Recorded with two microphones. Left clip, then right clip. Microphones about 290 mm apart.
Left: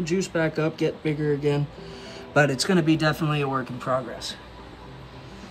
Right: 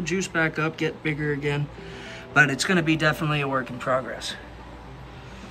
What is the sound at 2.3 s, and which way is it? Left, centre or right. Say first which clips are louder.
Speech: right 1 dB; centre.